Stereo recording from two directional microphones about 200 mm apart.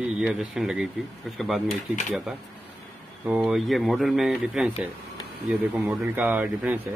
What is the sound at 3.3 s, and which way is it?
Speech, 5° right (ahead or behind).